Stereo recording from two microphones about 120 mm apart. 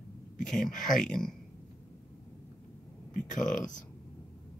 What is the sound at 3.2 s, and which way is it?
Speech, 90° left.